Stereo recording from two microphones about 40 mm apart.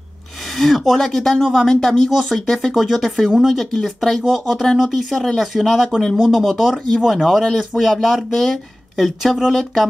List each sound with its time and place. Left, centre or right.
0.5 s speech: centre
2.0 s speech: centre
2.7 s speech: centre
3.7 s speech: centre
5.1 s speech: centre
5.4 s speech: centre
5.9 s speech: centre
6.1 s speech: centre
9.2 s speech: centre
9.5 s speech: centre